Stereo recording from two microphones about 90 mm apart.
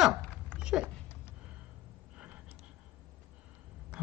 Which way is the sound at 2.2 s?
10° right (ahead or behind).